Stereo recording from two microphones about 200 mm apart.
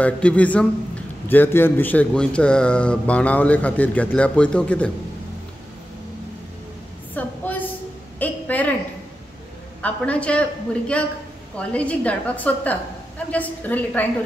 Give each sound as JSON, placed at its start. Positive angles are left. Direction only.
{"t": 0.0, "sound": "a man's voice", "side_deg": 5}
{"t": 7.2, "sound": "a sound", "side_deg": 10}
{"t": 9.8, "sound": "a man's voice", "side_deg": 5}